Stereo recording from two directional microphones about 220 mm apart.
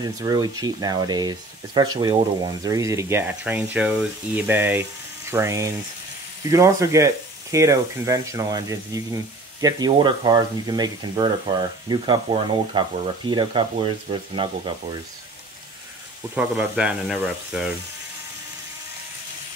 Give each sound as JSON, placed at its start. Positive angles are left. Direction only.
{"t": 0.0, "sound": "speech", "side_deg": -15}
{"t": 16.3, "sound": "speech", "side_deg": -5}